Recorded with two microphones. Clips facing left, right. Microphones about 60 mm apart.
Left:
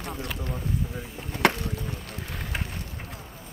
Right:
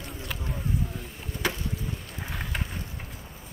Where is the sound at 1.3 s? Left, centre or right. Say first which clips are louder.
Left 7 dB; left.